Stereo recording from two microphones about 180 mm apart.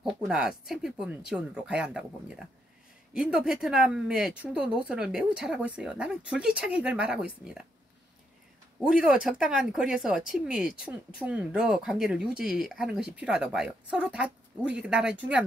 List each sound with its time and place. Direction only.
0.0 s speech: 5° right (ahead or behind)
8.7 s speech: 5° right (ahead or behind)